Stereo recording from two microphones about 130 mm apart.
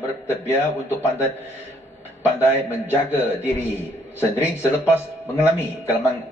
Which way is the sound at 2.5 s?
15° left (ahead or behind).